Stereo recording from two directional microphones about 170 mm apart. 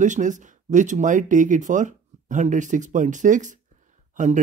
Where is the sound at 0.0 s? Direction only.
45° right (ahead or behind).